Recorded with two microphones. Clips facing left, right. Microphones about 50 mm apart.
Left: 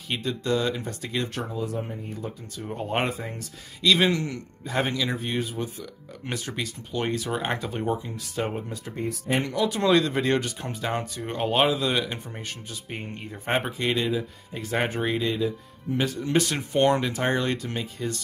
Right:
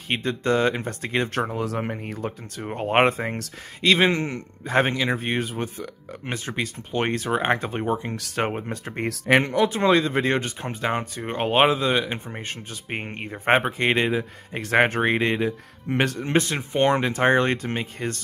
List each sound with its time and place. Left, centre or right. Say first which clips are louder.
0.1 s speech: right 4 dB; right
1.6 s speech: right 4 dB; right
2.1 s speech: right 4 dB; right
3.8 s speech: right 2 dB; right
6.2 s speech: right 3 dB; right
8.0 s speech: right 4 dB; right
9.4 s speech: right 4 dB; right
16.5 s speech: right 1 dB; right